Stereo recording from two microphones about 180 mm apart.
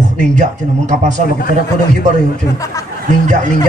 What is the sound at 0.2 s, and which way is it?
Speech, 40° right (ahead or behind).